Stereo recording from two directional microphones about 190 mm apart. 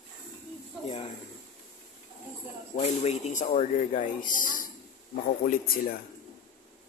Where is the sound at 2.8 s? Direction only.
35° left (ahead or behind).